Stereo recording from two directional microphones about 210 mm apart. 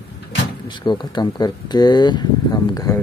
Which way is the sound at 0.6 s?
20° left (ahead or behind).